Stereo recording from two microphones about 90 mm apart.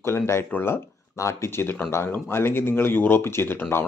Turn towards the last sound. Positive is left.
turn(degrees=25)  # may be behind; listen again after turning